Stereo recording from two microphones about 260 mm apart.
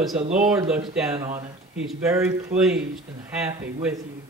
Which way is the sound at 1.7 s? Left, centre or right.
Centre.